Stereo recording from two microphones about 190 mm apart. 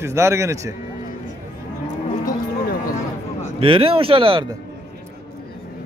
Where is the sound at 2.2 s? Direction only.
50° left (ahead or behind).